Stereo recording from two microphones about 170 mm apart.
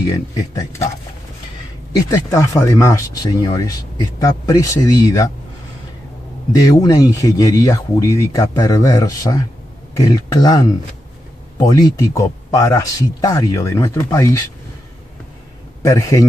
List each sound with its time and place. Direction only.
0.0 s speech: 20° left (ahead or behind)
2.0 s speech: 20° left (ahead or behind)
6.5 s speech: 20° left (ahead or behind)
15.8 s speech: 20° left (ahead or behind)